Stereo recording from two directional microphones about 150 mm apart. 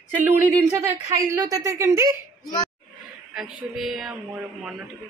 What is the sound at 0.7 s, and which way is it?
A woman's voice, 15° right (ahead or behind).